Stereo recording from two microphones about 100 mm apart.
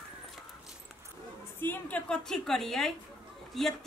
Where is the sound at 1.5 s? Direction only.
20° left (ahead or behind).